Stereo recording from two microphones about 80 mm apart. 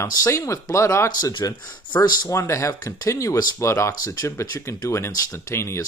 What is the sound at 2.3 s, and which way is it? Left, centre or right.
Speech, left.